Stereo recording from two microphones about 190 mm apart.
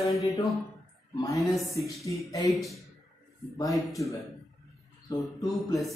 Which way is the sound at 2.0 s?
15° left (ahead or behind).